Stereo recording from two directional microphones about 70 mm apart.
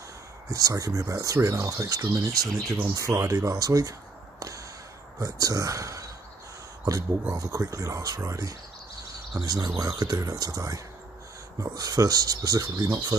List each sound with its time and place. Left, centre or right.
0.5 s speech: right
2.9 s speech: right
5.2 s speech: right
9.3 s speech: right